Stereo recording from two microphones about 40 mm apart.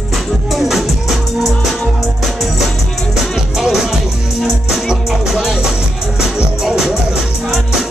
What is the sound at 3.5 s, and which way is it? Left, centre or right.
Music, centre.